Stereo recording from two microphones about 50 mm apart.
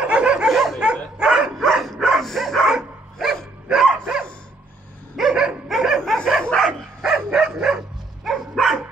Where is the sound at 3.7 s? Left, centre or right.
Centre.